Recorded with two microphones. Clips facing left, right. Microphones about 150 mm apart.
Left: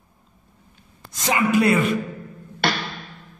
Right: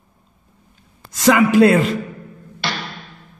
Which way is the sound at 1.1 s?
90° right.